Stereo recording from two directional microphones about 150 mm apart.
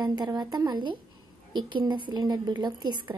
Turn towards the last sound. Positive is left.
turn(degrees=-30)  # may be behind; listen again after turning